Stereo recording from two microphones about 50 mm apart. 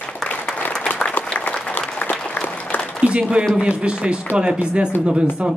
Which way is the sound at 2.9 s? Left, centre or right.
Right.